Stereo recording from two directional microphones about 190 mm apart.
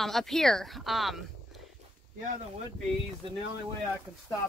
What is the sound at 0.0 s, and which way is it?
Speech, centre (ahead or behind).